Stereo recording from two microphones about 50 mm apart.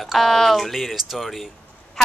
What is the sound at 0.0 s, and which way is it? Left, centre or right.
A woman's voice, centre.